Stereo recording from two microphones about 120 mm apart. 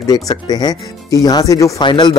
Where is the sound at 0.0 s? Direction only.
30° left (ahead or behind).